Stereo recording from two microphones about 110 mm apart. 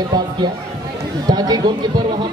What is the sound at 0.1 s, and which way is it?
A man's voice, 35° right (ahead or behind).